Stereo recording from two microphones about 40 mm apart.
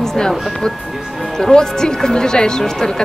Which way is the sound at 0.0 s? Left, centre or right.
Centre.